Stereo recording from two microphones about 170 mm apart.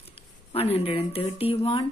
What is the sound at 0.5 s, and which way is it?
Speech, 35° left (ahead or behind).